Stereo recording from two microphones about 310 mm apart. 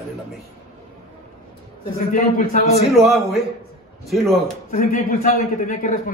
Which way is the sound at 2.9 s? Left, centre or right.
Centre.